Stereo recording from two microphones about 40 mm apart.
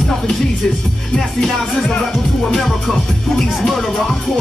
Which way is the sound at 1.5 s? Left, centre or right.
Centre.